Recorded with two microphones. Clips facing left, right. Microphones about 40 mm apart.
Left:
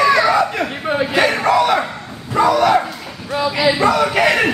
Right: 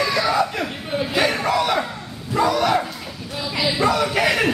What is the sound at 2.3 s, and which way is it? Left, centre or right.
Dog, centre.